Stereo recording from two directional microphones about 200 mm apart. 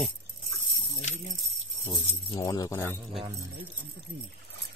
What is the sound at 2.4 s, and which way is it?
Speech, 15° left (ahead or behind).